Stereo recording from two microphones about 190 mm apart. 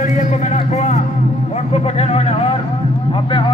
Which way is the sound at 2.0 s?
30° left (ahead or behind).